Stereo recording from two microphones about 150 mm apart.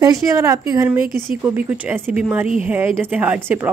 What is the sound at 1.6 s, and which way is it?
Speech, 10° right (ahead or behind).